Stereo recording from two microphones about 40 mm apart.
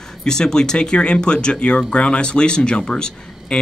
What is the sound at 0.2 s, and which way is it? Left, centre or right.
Speech, centre.